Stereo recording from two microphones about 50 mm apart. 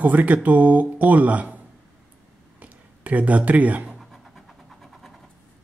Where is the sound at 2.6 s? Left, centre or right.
Right.